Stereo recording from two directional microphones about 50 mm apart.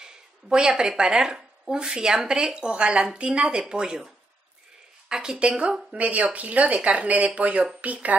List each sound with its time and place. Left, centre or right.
0.0 s speech: centre
5.1 s speech: centre